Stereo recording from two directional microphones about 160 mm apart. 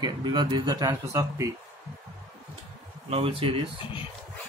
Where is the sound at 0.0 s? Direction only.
25° right (ahead or behind).